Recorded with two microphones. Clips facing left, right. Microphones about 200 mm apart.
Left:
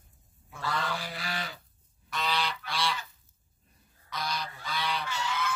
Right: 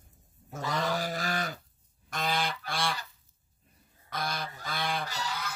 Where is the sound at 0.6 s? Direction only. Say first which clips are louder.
Right 2 dB; 20° right (ahead or behind).